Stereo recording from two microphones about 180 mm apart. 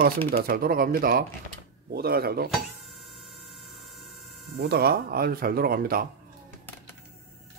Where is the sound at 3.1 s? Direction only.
Centre (ahead or behind).